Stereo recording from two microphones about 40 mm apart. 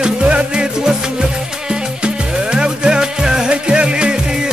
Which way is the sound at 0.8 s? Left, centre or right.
Centre.